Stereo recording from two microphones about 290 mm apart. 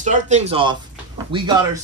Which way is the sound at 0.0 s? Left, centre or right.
Right.